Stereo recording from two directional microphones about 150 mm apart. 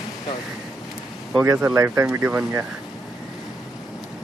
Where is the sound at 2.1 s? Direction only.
5° right (ahead or behind).